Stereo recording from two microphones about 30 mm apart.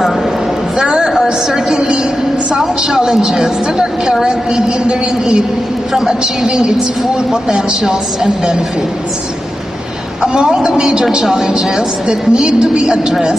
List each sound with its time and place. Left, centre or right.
0.7 s a sound: right
3.0 s a woman's voice: centre
4.2 s a woman's voice: right
5.9 s a woman's voice: centre
7.8 s a woman's voice: centre
10.2 s a woman's voice: right